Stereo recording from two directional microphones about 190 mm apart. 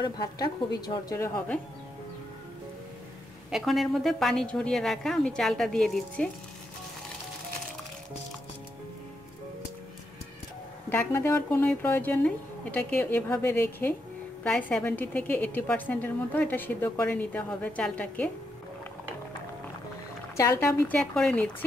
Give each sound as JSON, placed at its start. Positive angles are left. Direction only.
{"t": 0.0, "sound": "a woman's voice", "side_deg": 20}
{"t": 3.4, "sound": "a woman's voice", "side_deg": 0}
{"t": 10.9, "sound": "a woman's voice", "side_deg": 15}
{"t": 20.3, "sound": "a woman's voice", "side_deg": 15}
{"t": 21.0, "sound": "a woman's voice", "side_deg": 5}